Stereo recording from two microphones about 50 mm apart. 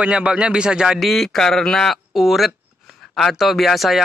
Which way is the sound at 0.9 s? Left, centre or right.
Centre.